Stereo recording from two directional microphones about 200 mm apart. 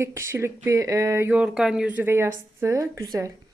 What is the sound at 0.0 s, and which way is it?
Speech, 15° right (ahead or behind).